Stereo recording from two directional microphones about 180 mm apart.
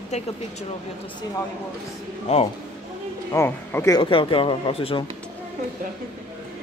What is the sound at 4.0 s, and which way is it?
Speech, 30° left (ahead or behind).